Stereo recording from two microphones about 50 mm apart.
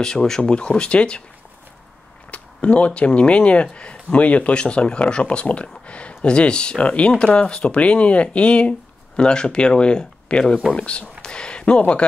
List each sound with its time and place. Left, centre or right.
0.0 s speech: centre
2.3 s speech: left